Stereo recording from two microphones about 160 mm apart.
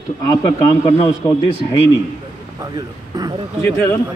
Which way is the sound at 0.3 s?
20° left (ahead or behind).